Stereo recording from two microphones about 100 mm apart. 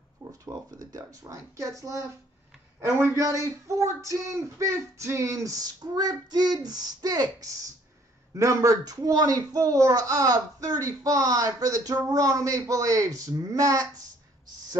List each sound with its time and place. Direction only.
0.2 s speech: 35° right (ahead or behind)